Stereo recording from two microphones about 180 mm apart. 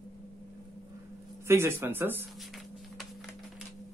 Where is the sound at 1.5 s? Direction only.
15° right (ahead or behind).